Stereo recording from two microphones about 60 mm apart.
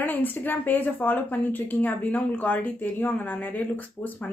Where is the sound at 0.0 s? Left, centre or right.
Left.